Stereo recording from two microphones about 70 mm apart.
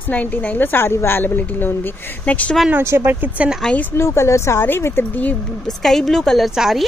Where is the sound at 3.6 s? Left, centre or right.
Centre.